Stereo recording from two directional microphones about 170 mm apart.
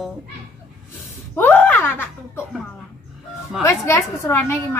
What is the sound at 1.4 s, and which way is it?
Speech, 10° left (ahead or behind).